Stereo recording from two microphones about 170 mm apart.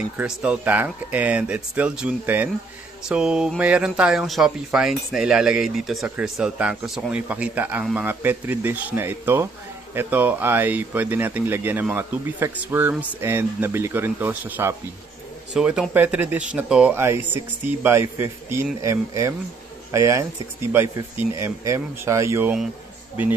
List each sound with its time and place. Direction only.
0.2 s speech: 10° right (ahead or behind)